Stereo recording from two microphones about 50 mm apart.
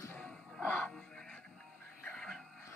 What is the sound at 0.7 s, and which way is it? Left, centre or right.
Music, left.